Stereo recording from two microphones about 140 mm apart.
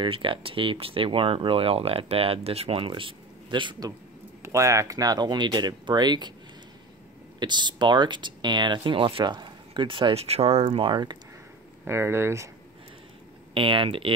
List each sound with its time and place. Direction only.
0.0 s speech: 35° right (ahead or behind)
4.4 s speech: 20° right (ahead or behind)
7.3 s speech: 30° right (ahead or behind)
11.8 s speech: 15° right (ahead or behind)
13.6 s speech: 40° right (ahead or behind)